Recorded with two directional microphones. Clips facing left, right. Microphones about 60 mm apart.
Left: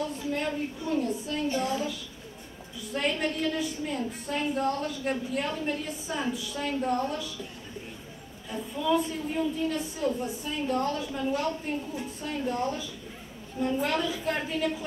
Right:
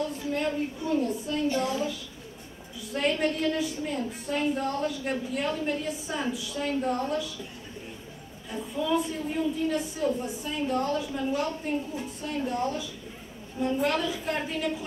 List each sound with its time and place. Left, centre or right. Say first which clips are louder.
0.2 s a sound: right 1 dB; centre
1.0 s a woman's voice: right 1 dB; centre
1.5 s a woman's voice: left 1 dB; left
2.9 s a woman's voice: right 2 dB; centre
8.5 s a woman's voice: left 1 dB; centre